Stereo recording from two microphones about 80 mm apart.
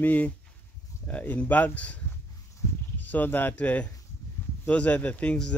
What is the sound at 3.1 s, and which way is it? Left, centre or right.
Speech, left.